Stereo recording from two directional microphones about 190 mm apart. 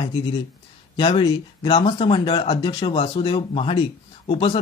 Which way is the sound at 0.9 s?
25° left (ahead or behind).